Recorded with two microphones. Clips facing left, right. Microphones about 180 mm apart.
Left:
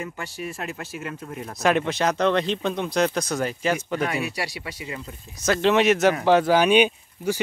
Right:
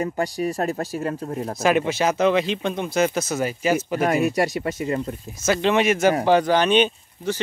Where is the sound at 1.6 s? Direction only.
5° right (ahead or behind).